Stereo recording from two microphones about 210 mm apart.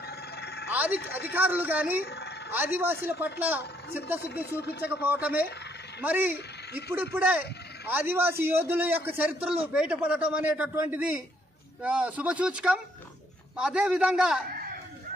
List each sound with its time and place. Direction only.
0.0 s telephone bell ringing: 50° left (ahead or behind)
0.7 s a man's voice: 10° right (ahead or behind)
2.0 s a sound: 50° left (ahead or behind)
2.5 s a man's voice: 10° right (ahead or behind)
4.6 s speech: 50° left (ahead or behind)
5.0 s a man's voice: 10° right (ahead or behind)